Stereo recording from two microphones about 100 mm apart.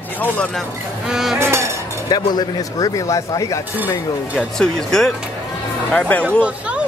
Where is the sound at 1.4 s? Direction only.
25° right (ahead or behind).